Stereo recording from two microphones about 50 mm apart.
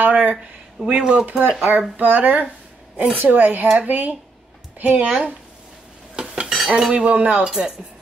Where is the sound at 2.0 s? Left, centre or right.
Right.